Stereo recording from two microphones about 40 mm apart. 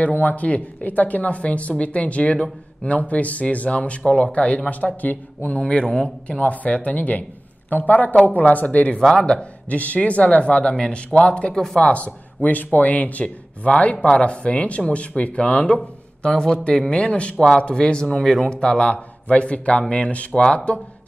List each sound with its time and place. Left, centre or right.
0.0 s speech: left
5.6 s speech: left
6.2 s speech: left
9.1 s speech: left
9.7 s speech: left
11.5 s speech: centre
11.8 s speech: left